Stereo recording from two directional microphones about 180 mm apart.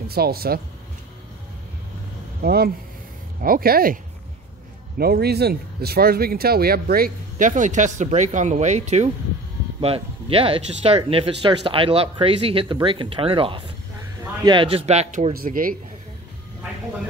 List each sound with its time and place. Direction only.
0.1 s speech: 60° right (ahead or behind)
2.4 s speech: 60° right (ahead or behind)